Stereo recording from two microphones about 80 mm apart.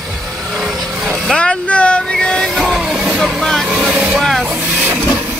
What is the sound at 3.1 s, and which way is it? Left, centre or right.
Vehicle, centre.